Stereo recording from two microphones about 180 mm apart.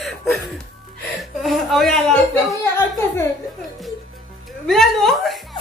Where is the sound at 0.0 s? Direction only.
Centre (ahead or behind).